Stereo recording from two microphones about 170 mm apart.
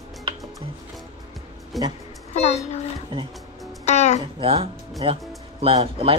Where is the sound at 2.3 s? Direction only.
40° left (ahead or behind).